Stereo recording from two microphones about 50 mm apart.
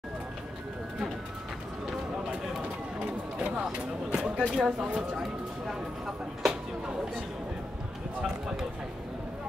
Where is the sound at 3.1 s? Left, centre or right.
Centre.